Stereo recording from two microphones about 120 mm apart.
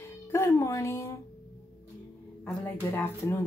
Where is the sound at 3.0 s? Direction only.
20° left (ahead or behind).